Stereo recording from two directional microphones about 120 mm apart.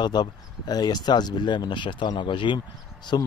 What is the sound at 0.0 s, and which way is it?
Speech, 35° left (ahead or behind).